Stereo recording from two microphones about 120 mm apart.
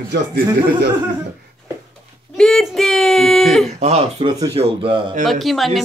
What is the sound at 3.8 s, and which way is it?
Speech, 65° right (ahead or behind).